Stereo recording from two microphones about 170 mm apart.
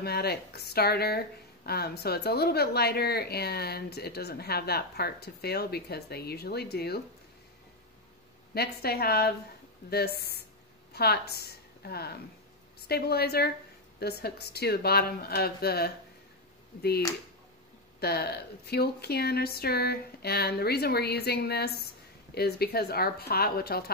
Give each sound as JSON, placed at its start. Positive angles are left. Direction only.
{"t": 0.0, "sound": "speech", "side_deg": 70}
{"t": 8.5, "sound": "a woman's voice", "side_deg": 65}
{"t": 18.0, "sound": "speech", "side_deg": 70}